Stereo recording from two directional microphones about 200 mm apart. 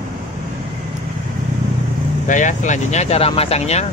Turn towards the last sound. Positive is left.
turn(degrees=35)  # may be behind; listen again after turning